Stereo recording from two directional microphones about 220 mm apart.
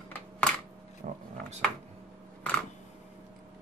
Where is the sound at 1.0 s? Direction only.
35° right (ahead or behind).